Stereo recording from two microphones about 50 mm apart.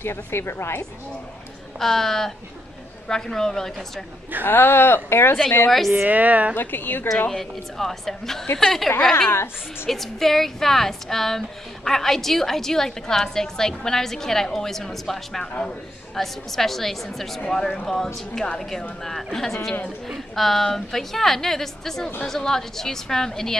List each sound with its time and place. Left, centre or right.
0.0 s speech: left
1.8 s speech: centre
4.5 s speech: left
5.7 s a woman's voice: centre
6.0 s speech: right
6.5 s speech: left
7.2 s a woman's voice: centre